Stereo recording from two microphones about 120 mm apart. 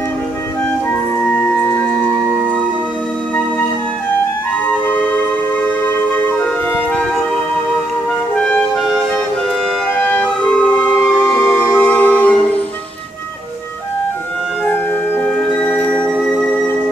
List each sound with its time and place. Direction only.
1.1 s music: 15° left (ahead or behind)
8.5 s clarinet: 5° left (ahead or behind)
11.0 s music: 15° left (ahead or behind)
14.6 s music: 15° left (ahead or behind)